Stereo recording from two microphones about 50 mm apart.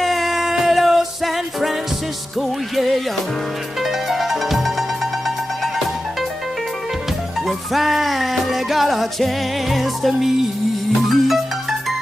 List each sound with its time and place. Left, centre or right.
0.0 s music: centre
3.8 s music: centre
7.4 s music: centre